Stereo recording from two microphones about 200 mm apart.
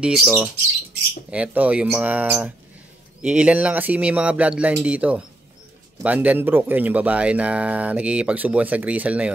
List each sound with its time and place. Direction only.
0.0 s speech: 5° right (ahead or behind)